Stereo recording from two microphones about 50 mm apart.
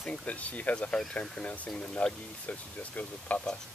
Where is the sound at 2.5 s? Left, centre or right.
Left.